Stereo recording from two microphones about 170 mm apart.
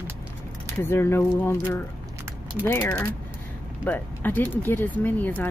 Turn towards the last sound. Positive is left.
turn(degrees=10)  # may be behind; listen again after turning